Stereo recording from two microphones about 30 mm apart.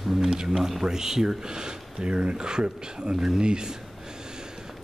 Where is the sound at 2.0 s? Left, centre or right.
Right.